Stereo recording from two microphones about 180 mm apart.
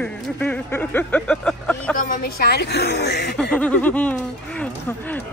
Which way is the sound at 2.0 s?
55° left (ahead or behind).